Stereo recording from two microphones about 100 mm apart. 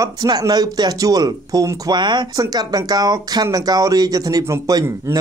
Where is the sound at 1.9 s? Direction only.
45° right (ahead or behind).